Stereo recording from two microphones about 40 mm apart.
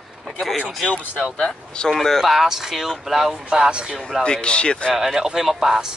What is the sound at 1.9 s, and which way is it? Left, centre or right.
Speech, centre.